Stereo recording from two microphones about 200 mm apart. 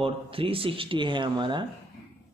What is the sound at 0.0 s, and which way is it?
Speech, 25° right (ahead or behind).